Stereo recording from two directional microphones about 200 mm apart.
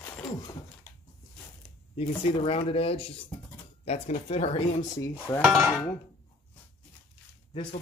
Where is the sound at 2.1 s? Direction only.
25° left (ahead or behind).